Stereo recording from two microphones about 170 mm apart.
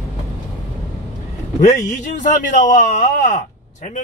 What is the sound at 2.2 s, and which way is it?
Speech, 45° left (ahead or behind).